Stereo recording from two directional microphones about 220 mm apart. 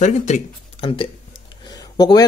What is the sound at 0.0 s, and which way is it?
Speech, 30° left (ahead or behind).